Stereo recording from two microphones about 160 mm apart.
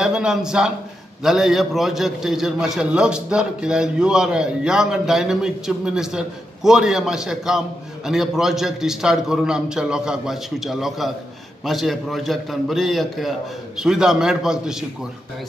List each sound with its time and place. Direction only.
0.0 s a man's voice: 5° right (ahead or behind)